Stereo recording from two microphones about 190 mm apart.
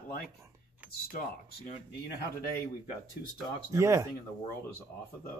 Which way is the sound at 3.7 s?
15° right (ahead or behind).